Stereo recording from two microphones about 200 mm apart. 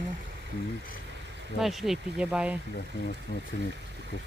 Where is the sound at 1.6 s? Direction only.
Centre (ahead or behind).